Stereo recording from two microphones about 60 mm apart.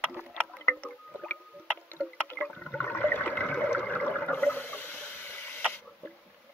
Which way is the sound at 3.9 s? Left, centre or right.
Left.